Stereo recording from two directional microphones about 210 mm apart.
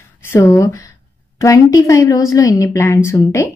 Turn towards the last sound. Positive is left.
turn(degrees=15)  # may be behind; listen again after turning